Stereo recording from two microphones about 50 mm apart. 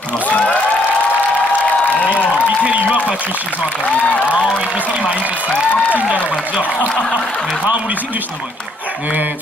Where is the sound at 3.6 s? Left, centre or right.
Left.